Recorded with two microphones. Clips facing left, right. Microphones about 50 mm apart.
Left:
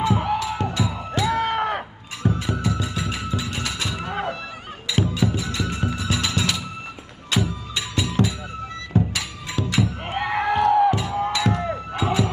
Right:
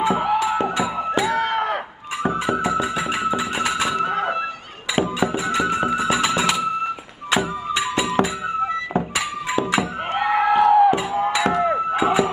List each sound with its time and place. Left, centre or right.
0.0 s music: centre
1.2 s a sound: centre
2.2 s music: centre
5.2 s music: centre
10.1 s a sound: centre
10.9 s music: centre